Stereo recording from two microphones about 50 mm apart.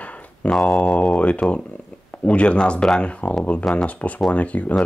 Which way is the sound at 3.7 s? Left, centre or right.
Centre.